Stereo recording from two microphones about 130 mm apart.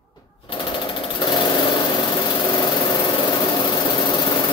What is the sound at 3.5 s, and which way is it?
Vehicle, 35° left (ahead or behind).